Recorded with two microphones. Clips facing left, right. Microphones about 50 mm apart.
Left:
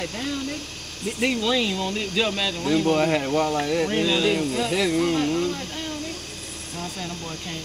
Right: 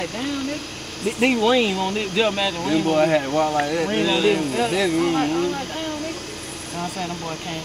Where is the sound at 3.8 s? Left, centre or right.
Centre.